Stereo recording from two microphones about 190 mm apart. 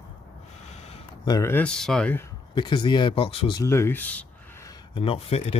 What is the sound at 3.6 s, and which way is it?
Speech, 15° left (ahead or behind).